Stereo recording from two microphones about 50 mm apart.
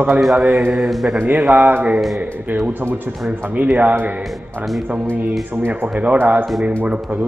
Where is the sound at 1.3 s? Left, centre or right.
Right.